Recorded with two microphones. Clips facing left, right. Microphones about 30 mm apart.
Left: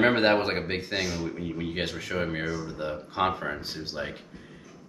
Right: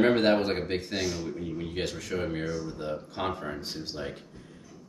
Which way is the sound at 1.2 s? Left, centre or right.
Left.